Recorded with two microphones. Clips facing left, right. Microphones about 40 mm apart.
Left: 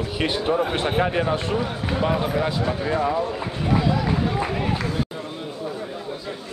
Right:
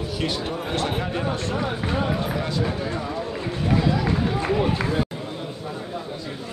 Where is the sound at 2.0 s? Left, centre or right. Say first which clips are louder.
Left 3 dB; centre.